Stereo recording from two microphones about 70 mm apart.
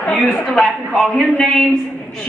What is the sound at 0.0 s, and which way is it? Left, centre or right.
Speech, centre.